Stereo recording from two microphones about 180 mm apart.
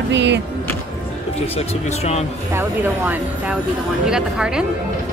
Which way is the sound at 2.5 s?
10° right (ahead or behind).